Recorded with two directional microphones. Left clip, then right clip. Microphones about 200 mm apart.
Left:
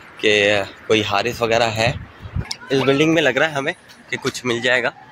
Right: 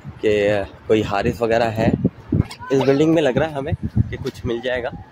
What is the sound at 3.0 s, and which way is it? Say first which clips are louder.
A man's voice: left 1 dB; 25° right (ahead or behind).